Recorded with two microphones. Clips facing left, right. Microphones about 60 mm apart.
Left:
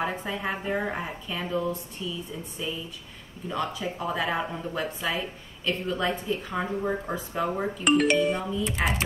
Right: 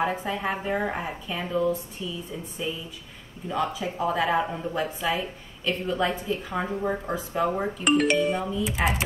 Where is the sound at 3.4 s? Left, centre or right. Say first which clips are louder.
Right 2 dB; centre.